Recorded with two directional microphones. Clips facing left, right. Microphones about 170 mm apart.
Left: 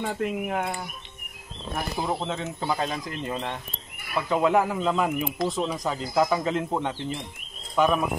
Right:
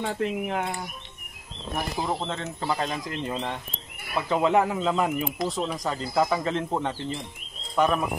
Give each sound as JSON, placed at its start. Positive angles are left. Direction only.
{"t": 0.0, "sound": "speech", "side_deg": 5}
{"t": 1.8, "sound": "speech", "side_deg": 5}